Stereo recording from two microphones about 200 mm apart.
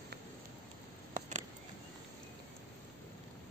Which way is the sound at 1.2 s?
35° right (ahead or behind).